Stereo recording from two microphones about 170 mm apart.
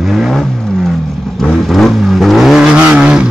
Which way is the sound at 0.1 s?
Centre (ahead or behind).